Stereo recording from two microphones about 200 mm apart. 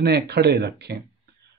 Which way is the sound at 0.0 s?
55° right (ahead or behind).